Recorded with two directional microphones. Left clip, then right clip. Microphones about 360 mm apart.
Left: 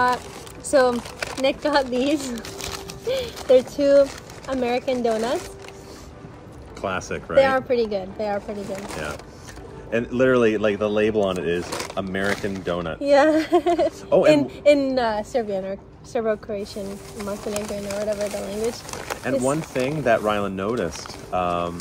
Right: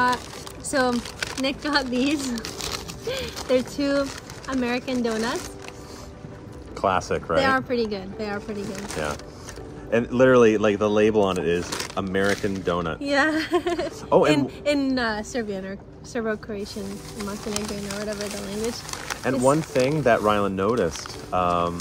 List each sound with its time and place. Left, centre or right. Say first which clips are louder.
0.7 s speech: left 5 dB; centre
6.8 s speech: right 5 dB; centre
7.3 s a woman's voice: left 5 dB; centre
9.8 s speech: right 2 dB; centre
11.6 s a woman's voice: left 1 dB; centre
13.0 s a woman's voice: left 7 dB; centre